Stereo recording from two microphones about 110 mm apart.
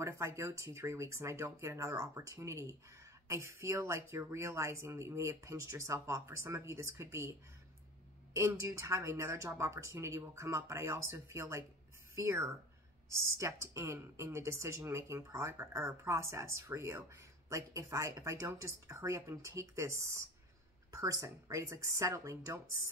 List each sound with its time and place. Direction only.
0.0 s speech: 25° right (ahead or behind)